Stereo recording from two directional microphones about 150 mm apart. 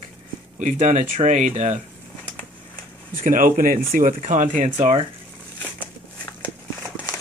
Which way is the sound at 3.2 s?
65° right (ahead or behind).